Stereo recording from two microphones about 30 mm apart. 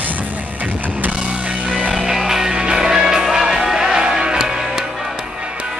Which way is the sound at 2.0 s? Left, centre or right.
Centre.